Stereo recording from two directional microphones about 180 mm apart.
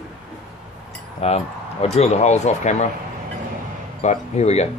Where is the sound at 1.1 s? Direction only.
35° left (ahead or behind).